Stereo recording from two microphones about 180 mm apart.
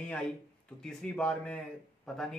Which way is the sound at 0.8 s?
5° left (ahead or behind).